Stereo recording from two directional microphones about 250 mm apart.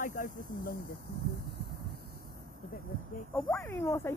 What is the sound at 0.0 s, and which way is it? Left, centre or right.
Speech, left.